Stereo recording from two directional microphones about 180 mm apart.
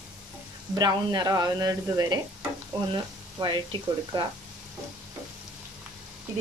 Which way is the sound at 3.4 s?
20° right (ahead or behind).